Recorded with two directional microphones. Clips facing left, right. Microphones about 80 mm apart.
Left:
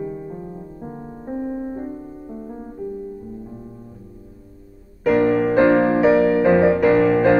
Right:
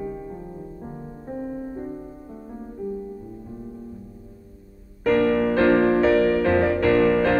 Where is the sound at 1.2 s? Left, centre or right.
Left.